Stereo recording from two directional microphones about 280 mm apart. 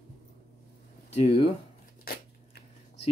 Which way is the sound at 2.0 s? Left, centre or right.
Left.